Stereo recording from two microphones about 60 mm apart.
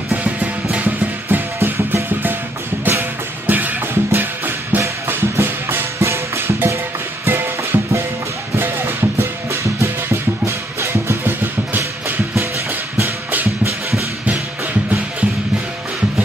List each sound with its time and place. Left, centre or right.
0.2 s music: centre
0.8 s music: right
4.8 s music: right